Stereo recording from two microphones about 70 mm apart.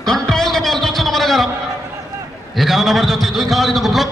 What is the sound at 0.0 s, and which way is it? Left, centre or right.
Music, centre.